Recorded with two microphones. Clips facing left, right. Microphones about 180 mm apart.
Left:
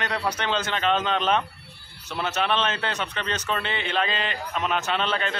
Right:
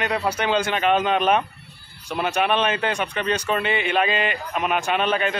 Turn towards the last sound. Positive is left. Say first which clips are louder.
# right 4 dB
turn(degrees=-10)  # may be behind; listen again after turning